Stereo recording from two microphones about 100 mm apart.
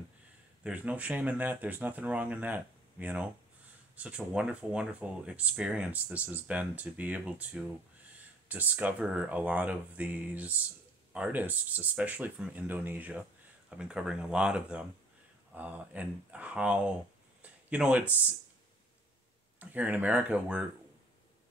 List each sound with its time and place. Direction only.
0.7 s speech: 15° right (ahead or behind)
17.4 s a sound: 15° right (ahead or behind)
19.6 s speech: 15° right (ahead or behind)